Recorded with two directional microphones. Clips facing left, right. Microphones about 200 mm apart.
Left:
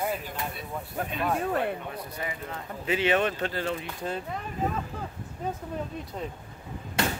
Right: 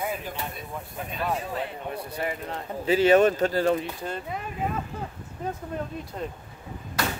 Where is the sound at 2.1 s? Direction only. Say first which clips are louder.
Right 5 dB; 35° right (ahead or behind).